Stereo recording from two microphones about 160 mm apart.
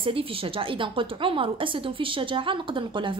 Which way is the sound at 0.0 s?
35° right (ahead or behind).